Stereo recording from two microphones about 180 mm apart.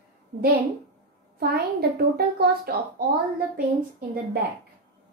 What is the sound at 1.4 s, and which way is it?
A woman's voice, 60° right (ahead or behind).